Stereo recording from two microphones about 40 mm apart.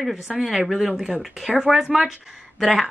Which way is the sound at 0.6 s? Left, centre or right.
Centre.